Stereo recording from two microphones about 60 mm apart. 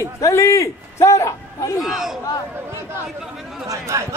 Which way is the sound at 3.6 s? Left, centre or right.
Right.